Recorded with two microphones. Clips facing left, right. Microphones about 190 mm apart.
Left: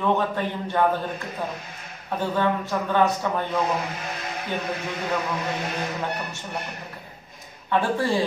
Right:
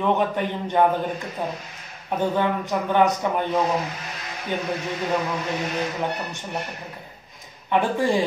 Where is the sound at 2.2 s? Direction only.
15° right (ahead or behind).